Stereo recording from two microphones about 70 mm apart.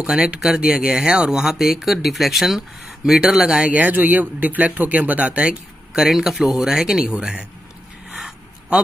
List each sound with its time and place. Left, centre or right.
0.0 s speech: centre
6.0 s speech: centre